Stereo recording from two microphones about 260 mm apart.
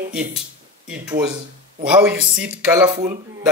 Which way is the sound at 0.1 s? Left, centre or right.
Centre.